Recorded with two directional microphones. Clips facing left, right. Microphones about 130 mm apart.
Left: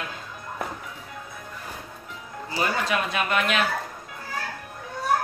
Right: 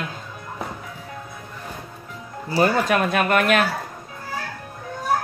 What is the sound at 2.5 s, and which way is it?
Speech, 45° right (ahead or behind).